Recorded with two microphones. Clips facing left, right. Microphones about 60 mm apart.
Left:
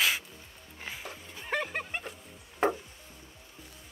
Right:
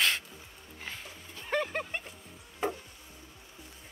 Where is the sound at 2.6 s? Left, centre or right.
Left.